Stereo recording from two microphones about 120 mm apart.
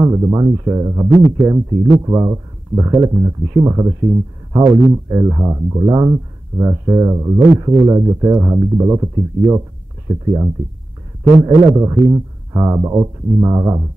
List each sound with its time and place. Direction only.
0.0 s a man's voice: 25° right (ahead or behind)
5.2 s speech: 25° right (ahead or behind)